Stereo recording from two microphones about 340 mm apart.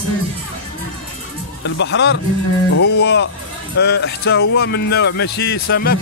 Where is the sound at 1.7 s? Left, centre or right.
Left.